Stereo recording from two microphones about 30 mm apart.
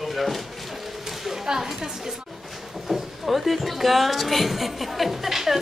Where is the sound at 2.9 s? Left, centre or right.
Centre.